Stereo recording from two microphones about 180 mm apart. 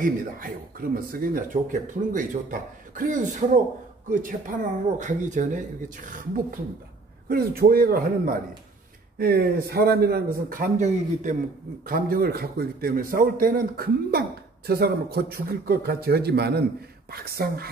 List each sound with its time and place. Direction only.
0.0 s a man's voice: 50° right (ahead or behind)